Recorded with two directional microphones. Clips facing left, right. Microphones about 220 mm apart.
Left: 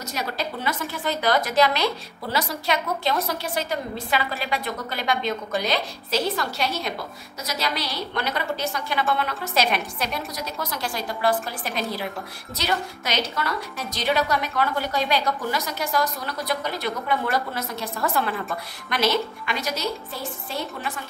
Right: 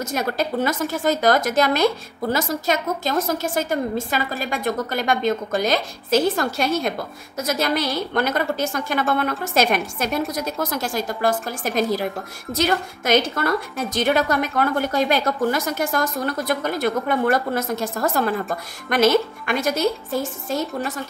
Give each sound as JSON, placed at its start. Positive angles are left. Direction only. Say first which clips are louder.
{"t": 0.1, "sound": "a woman's voice", "louder": "right 5 dB", "side_deg": -50}